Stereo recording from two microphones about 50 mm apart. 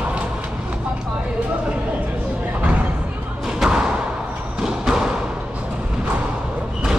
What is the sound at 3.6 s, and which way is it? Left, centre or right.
Thump, centre.